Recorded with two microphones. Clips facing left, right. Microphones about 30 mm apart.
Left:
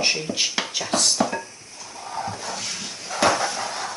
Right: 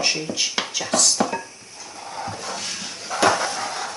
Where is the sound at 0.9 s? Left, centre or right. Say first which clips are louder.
Right 1 dB; left.